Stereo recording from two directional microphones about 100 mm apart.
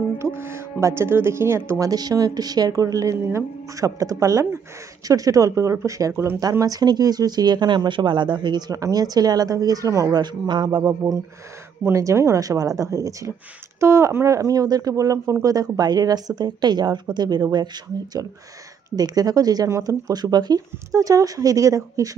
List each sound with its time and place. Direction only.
0.2 s speech: 25° right (ahead or behind)
1.7 s speech: 35° right (ahead or behind)
10.2 s speech: 45° right (ahead or behind)
10.8 s speech: 35° right (ahead or behind)
18.9 s speech: 40° right (ahead or behind)